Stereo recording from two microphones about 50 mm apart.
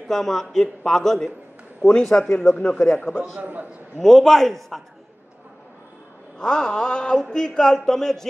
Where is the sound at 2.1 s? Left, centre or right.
Left.